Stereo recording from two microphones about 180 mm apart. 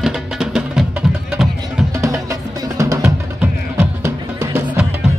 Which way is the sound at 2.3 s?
20° right (ahead or behind).